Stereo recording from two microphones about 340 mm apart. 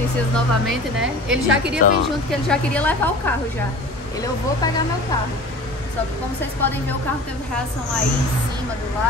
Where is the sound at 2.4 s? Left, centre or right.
Centre.